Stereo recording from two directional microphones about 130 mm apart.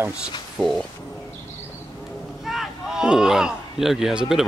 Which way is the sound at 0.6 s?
Centre (ahead or behind).